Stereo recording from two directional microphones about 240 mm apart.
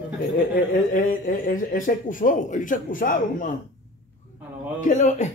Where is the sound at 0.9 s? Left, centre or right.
Left.